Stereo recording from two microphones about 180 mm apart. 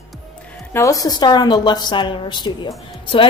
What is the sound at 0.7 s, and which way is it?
A woman's voice, 15° left (ahead or behind).